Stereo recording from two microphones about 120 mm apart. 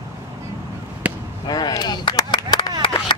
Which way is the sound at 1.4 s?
35° left (ahead or behind).